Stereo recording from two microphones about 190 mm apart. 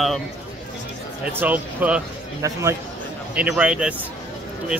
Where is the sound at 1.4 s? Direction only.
10° right (ahead or behind).